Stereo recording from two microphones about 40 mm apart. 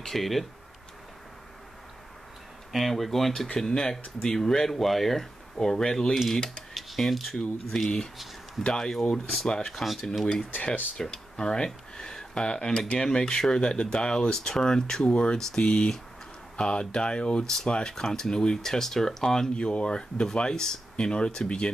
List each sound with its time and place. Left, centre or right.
0.0 s speech: centre
2.7 s speech: centre
6.7 s a sound: centre
7.7 s speech: centre
10.5 s speech: left
11.0 s speech: centre
19.5 s speech: left